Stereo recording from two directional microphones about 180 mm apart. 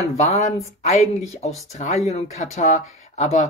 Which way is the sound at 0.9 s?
35° left (ahead or behind).